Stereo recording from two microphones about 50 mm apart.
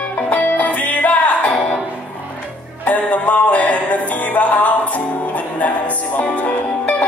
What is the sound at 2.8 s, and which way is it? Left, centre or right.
Music, left.